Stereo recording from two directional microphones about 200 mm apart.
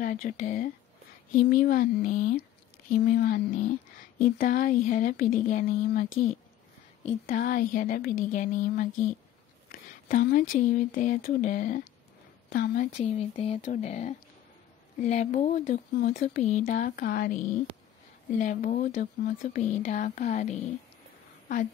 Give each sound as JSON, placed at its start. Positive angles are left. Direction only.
{"t": 0.0, "sound": "speech", "side_deg": 45}
{"t": 7.2, "sound": "speech", "side_deg": 45}
{"t": 13.4, "sound": "speech", "side_deg": 30}
{"t": 18.4, "sound": "speech", "side_deg": 40}